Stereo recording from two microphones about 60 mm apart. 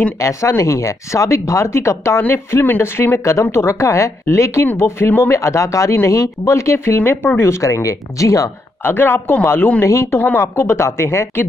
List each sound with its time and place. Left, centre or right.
0.2 s speech: left
2.2 s speech: left
4.7 s speech: left
5.3 s speech: left
7.6 s speech: left
8.8 s a man's voice: left
9.8 s speech: left